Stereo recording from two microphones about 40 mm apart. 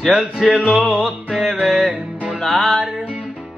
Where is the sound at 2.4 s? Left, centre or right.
Centre.